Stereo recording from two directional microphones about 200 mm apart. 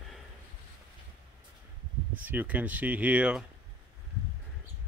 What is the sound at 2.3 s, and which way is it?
Speech, 10° right (ahead or behind).